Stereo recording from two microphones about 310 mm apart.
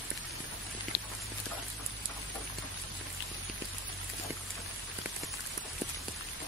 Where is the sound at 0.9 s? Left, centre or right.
Left.